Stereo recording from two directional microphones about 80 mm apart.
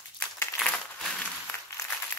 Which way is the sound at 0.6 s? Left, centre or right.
Centre.